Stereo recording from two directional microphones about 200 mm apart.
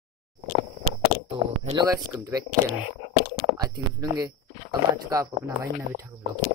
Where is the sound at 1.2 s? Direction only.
25° right (ahead or behind).